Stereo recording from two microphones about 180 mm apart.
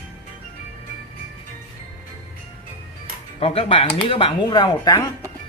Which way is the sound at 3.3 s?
30° left (ahead or behind).